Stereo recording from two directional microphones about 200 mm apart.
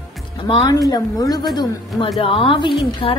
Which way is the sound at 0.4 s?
20° left (ahead or behind).